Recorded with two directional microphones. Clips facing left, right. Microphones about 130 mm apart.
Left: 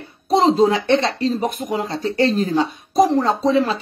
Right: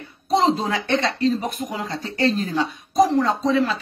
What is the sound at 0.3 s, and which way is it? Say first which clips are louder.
Speech: left 5 dB; 35° left (ahead or behind).